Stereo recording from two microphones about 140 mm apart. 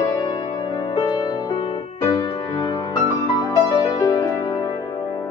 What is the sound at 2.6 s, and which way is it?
Music, 25° left (ahead or behind).